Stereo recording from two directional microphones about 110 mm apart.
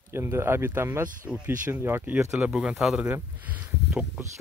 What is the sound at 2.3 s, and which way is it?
Speech, 10° right (ahead or behind).